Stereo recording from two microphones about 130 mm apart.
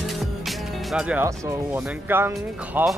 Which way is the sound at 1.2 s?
15° right (ahead or behind).